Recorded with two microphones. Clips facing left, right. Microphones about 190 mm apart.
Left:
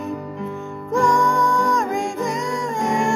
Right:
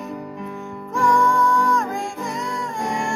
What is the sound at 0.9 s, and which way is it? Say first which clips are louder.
Music: left 1 dB; 20° left (ahead or behind).